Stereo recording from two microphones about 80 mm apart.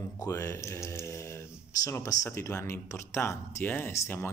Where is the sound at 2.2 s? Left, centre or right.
Left.